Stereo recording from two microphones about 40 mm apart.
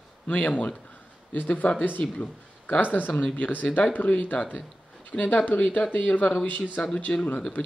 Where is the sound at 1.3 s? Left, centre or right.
Left.